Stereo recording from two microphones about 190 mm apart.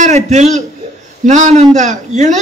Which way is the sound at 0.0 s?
40° right (ahead or behind).